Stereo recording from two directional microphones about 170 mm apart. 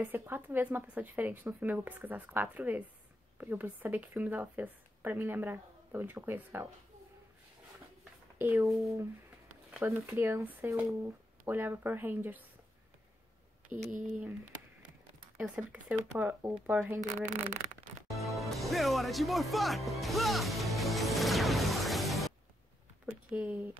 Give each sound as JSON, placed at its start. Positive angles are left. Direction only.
{"t": 0.0, "sound": "speech", "side_deg": -10}
{"t": 8.4, "sound": "speech", "side_deg": -15}
{"t": 8.6, "sound": "speech", "side_deg": 0}
{"t": 9.8, "sound": "speech", "side_deg": -15}
{"t": 15.3, "sound": "speech", "side_deg": -5}
{"t": 17.0, "sound": "speech", "side_deg": -45}
{"t": 18.1, "sound": "music", "side_deg": 0}
{"t": 23.0, "sound": "a sound", "side_deg": -10}